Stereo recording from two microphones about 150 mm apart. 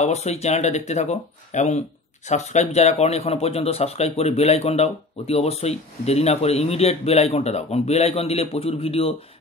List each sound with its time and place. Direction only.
0.0 s speech: 45° left (ahead or behind)